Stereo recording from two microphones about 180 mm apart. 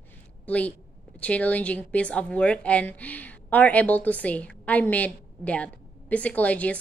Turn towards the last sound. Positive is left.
turn(degrees=10)  # may be behind; listen again after turning